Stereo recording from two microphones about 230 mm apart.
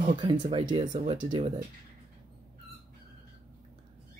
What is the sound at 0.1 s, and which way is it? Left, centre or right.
Speech, centre.